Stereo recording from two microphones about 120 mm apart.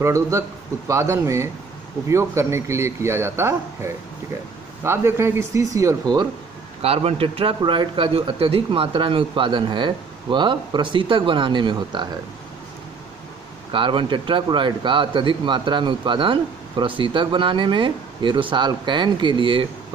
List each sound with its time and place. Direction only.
0.0 s speech: 25° right (ahead or behind)
6.8 s speech: 55° right (ahead or behind); by 12.2 s 40° right (ahead or behind)
13.7 s speech: 45° right (ahead or behind)